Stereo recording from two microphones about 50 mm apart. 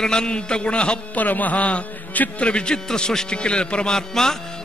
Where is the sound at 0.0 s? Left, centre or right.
Centre.